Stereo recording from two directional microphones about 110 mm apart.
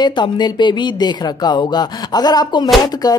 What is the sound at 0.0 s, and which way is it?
Speech, 45° left (ahead or behind).